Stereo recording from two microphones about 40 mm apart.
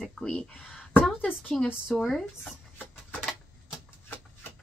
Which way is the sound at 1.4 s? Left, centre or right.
Centre.